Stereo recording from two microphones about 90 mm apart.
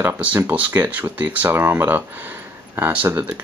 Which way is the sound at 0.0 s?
20° right (ahead or behind).